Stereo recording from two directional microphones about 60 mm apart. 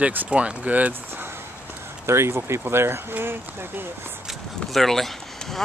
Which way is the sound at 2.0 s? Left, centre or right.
Right.